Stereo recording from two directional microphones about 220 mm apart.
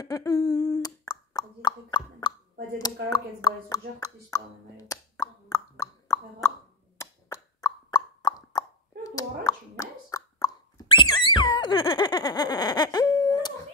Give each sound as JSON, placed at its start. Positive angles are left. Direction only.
{"t": 0.0, "sound": "humming", "side_deg": 15}
{"t": 2.8, "sound": "speech", "side_deg": 15}
{"t": 7.0, "sound": "plop", "side_deg": 15}